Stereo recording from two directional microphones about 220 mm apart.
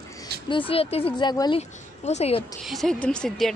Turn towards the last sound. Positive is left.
turn(degrees=5)  # may be behind; listen again after turning